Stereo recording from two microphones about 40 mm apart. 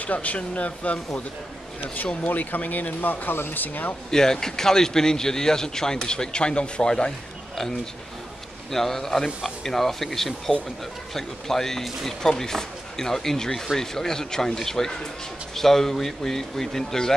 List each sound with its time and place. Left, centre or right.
0.0 s speech: left
2.2 s speech: left
4.1 s speech: centre
8.7 s speech: centre